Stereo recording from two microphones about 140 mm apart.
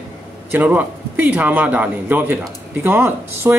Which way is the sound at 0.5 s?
10° right (ahead or behind).